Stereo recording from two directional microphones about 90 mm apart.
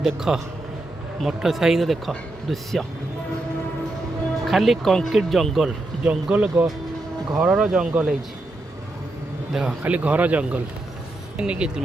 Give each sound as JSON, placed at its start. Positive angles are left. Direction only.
{"t": 0.0, "sound": "a man's voice", "side_deg": -5}
{"t": 4.5, "sound": "speech", "side_deg": 0}
{"t": 6.0, "sound": "a man's voice", "side_deg": -15}
{"t": 9.5, "sound": "a man's voice", "side_deg": -5}